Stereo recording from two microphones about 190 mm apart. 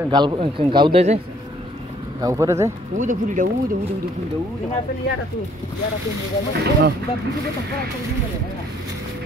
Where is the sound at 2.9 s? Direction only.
40° right (ahead or behind).